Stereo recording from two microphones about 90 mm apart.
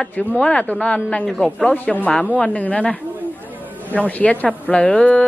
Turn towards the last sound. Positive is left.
turn(degrees=15)  # may be behind; listen again after turning